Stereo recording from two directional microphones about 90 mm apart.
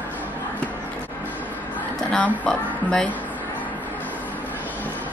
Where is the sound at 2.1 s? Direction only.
15° left (ahead or behind).